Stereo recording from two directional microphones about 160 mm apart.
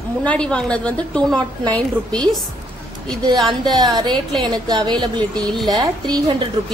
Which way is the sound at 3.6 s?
25° right (ahead or behind).